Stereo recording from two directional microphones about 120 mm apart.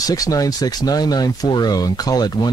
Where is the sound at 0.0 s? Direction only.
30° left (ahead or behind).